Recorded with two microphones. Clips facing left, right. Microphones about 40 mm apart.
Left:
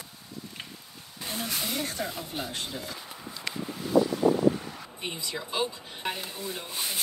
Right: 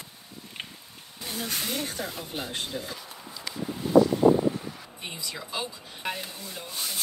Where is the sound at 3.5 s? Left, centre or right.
Left.